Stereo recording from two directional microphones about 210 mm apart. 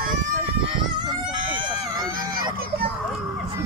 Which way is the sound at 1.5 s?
20° right (ahead or behind).